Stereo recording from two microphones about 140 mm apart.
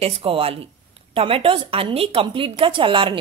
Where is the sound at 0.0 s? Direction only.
45° right (ahead or behind).